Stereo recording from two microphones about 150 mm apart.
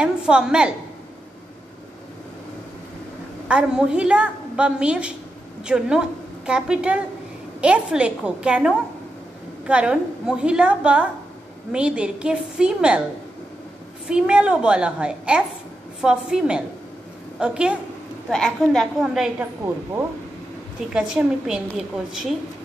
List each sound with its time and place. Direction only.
0.0 s a woman's voice: 5° right (ahead or behind)
3.4 s a woman's voice: 5° right (ahead or behind)
14.0 s a woman's voice: 5° right (ahead or behind)
20.9 s a woman's voice: 5° right (ahead or behind)